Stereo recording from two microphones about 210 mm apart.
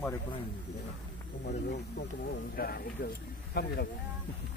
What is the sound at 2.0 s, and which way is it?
Speech, 45° left (ahead or behind).